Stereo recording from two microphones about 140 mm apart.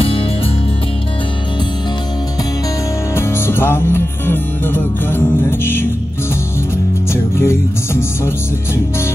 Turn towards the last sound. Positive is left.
turn(degrees=20)  # may be behind; listen again after turning